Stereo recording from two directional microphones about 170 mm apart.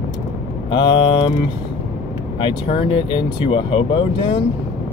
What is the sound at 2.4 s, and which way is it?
Speech, 35° left (ahead or behind).